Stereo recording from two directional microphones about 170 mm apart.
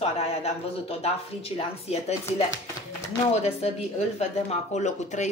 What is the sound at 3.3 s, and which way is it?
Speech, 40° left (ahead or behind).